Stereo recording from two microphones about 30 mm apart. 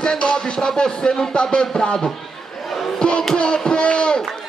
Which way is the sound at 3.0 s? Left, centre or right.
Left.